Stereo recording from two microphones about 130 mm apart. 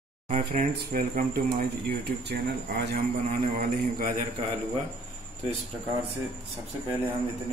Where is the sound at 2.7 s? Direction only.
75° right (ahead or behind).